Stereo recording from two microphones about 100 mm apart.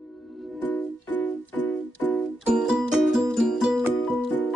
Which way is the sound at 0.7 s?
15° left (ahead or behind).